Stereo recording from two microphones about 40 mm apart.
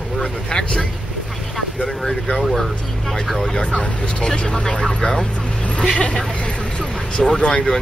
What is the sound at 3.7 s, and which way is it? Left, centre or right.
Speech, centre.